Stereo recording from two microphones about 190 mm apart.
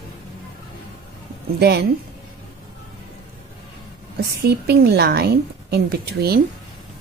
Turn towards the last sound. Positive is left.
turn(degrees=-55)  # may be behind; listen again after turning